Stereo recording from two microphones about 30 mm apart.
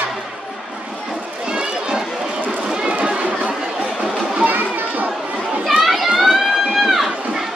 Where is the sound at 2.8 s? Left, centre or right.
Right.